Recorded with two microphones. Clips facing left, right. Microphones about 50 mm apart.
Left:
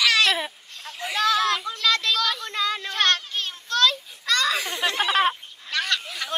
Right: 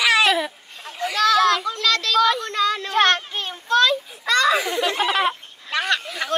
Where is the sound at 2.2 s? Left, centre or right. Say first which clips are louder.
Right 8 dB; centre.